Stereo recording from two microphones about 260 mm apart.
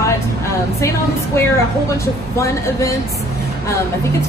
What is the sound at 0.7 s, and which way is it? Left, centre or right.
A woman's voice, centre.